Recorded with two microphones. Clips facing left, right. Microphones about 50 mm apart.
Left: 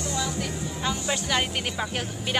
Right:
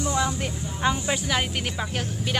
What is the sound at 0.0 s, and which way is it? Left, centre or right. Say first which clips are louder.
Vehicle: right 4 dB; right.